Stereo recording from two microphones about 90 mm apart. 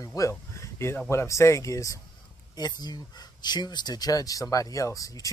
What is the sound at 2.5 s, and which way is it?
Speech, 50° left (ahead or behind).